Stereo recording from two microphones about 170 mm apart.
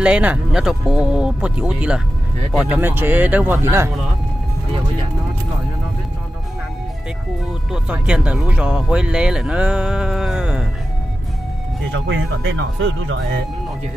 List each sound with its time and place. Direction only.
0.0 s speech: 10° right (ahead or behind)
7.7 s speech: 5° right (ahead or behind)
12.4 s speech: 90° right